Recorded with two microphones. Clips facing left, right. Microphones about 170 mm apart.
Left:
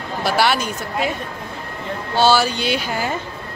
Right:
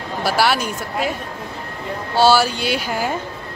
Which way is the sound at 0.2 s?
5° right (ahead or behind).